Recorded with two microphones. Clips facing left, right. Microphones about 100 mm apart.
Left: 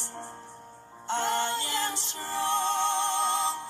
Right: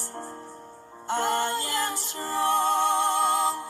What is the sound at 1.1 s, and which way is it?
Music, 45° right (ahead or behind).